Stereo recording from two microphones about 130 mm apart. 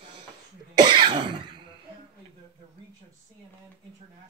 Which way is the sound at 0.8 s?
35° right (ahead or behind).